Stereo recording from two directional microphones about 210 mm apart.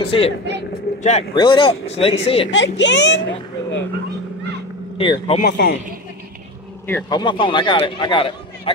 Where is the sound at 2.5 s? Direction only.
60° left (ahead or behind).